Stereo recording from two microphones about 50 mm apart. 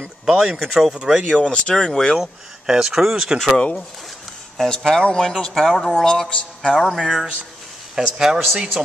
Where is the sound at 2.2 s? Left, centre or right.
Centre.